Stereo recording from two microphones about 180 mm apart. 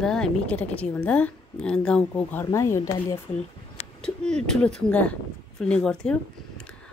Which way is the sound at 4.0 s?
5° left (ahead or behind).